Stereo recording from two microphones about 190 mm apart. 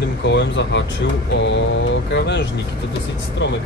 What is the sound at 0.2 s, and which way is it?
Speech, 70° left (ahead or behind).